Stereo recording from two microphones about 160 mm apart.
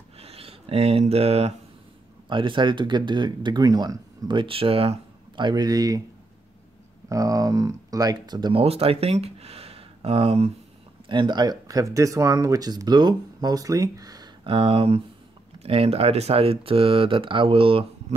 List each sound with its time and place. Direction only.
0.2 s speech: 40° right (ahead or behind)
7.1 s speech: 20° right (ahead or behind)